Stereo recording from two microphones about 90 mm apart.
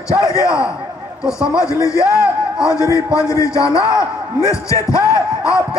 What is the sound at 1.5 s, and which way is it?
Music, 35° left (ahead or behind).